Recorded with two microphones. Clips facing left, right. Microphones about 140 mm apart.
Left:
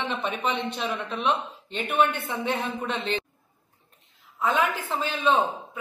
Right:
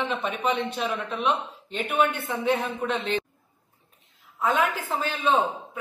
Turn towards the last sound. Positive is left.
turn(degrees=-10)  # may be behind; listen again after turning